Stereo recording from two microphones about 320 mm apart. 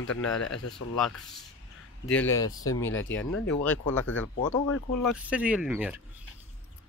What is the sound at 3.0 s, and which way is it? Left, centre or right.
Speech, left.